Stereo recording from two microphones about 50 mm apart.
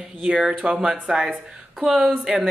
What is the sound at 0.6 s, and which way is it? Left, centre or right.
Speech, right.